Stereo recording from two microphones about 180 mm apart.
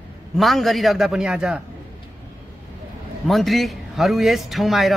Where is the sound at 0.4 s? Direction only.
Centre (ahead or behind).